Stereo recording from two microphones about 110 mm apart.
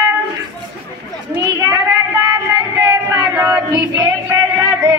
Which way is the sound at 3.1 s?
30° right (ahead or behind).